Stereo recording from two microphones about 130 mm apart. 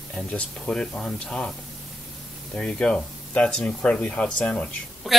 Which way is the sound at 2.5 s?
5° left (ahead or behind).